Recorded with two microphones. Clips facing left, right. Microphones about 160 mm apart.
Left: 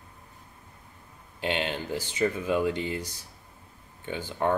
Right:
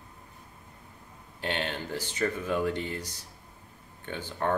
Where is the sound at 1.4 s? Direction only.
15° left (ahead or behind).